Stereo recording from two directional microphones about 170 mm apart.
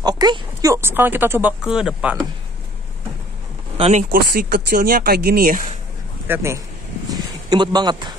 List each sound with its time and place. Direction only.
0.0 s speech: 25° right (ahead or behind); by 2.1 s 5° right (ahead or behind)
3.7 s speech: 35° right (ahead or behind)
4.1 s speech: 60° right (ahead or behind)
6.2 s speech: 15° right (ahead or behind)
7.1 s a sound: 25° right (ahead or behind)